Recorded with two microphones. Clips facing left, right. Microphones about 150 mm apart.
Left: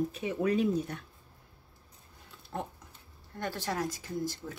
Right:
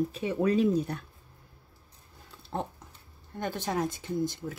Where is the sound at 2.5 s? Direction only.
30° right (ahead or behind).